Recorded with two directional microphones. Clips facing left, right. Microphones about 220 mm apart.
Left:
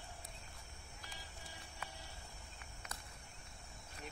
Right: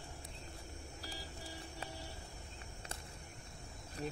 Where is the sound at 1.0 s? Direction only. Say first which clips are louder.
Right 7 dB; 35° right (ahead or behind).